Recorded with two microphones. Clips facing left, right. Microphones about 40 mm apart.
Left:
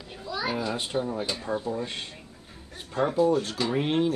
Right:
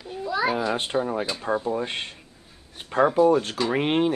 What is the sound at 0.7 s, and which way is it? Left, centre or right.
Speech, right.